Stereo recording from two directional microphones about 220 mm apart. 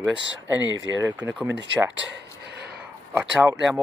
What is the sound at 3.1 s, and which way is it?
Speech, 10° right (ahead or behind).